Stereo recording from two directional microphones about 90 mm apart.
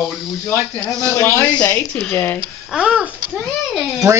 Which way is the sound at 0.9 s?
10° left (ahead or behind).